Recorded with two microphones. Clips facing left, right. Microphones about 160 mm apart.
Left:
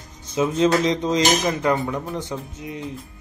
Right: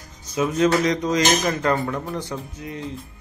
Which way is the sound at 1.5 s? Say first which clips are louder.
Left 1 dB; 15° left (ahead or behind).